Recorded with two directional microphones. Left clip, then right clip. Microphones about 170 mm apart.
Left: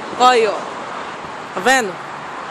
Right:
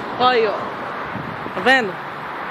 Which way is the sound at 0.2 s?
50° left (ahead or behind).